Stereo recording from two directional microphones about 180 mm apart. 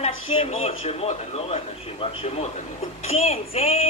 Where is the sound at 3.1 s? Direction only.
35° left (ahead or behind).